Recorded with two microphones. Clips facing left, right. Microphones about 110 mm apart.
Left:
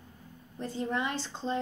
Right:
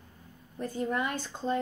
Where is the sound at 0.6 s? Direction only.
25° left (ahead or behind).